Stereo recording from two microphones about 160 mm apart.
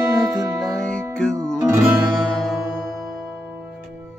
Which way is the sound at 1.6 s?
15° right (ahead or behind).